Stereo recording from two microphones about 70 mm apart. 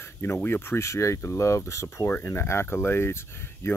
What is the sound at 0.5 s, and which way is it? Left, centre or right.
Speech, left.